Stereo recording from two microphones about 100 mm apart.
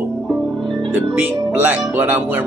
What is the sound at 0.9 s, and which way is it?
Speech, 15° right (ahead or behind).